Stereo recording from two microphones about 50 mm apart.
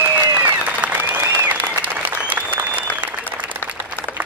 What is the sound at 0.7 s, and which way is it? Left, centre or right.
Applause, right.